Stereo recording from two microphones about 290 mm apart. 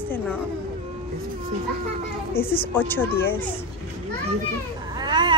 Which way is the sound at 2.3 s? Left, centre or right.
Centre.